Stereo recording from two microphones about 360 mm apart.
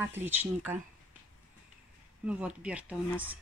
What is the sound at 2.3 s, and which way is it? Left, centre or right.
Speech, centre.